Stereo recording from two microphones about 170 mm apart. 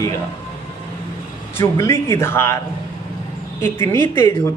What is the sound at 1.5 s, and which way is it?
A man's voice, 15° left (ahead or behind).